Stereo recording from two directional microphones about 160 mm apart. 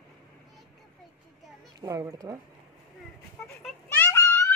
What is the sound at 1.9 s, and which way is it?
Speech, 20° right (ahead or behind).